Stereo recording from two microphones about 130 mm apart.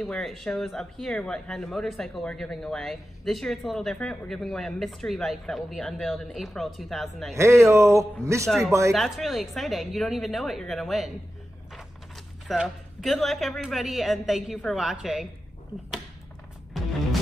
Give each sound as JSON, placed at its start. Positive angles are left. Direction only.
{"t": 0.0, "sound": "speech", "side_deg": 5}
{"t": 7.3, "sound": "a man's voice", "side_deg": -20}
{"t": 8.5, "sound": "speech", "side_deg": 0}
{"t": 12.4, "sound": "speech", "side_deg": 0}